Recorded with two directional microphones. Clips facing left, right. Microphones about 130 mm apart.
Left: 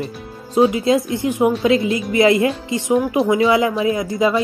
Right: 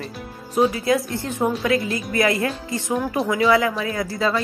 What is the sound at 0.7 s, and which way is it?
A woman's voice, 20° left (ahead or behind).